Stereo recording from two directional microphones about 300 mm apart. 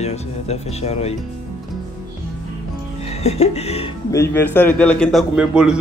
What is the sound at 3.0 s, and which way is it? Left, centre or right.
Speech, left.